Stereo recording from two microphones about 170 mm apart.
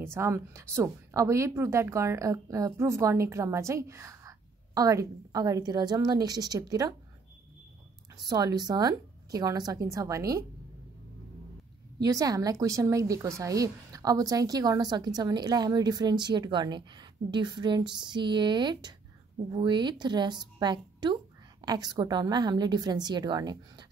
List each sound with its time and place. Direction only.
0.0 s a woman's voice: 15° right (ahead or behind)
8.3 s speech: 20° right (ahead or behind)
12.0 s speech: 20° right (ahead or behind)